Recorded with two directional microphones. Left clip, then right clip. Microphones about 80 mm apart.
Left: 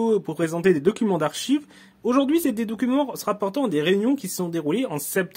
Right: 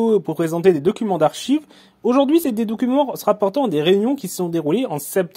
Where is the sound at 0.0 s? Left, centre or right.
Right.